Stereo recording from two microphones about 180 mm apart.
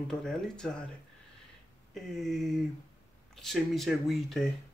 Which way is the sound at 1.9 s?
Centre (ahead or behind).